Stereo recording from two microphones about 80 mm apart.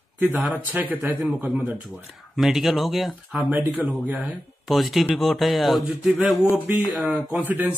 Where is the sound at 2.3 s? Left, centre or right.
Centre.